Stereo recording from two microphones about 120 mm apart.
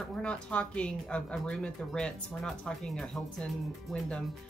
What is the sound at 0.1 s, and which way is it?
Speech, 10° left (ahead or behind).